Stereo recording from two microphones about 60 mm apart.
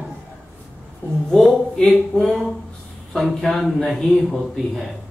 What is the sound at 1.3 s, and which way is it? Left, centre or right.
A man's voice, centre.